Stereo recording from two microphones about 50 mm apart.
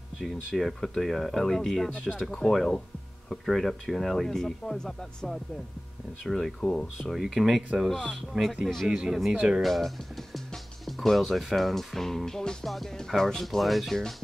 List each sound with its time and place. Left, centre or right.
0.2 s speech: centre
7.1 s speech: centre
9.6 s speech: centre